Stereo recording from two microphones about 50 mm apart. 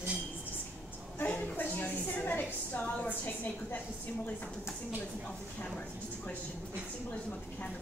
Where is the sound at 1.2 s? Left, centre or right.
Left.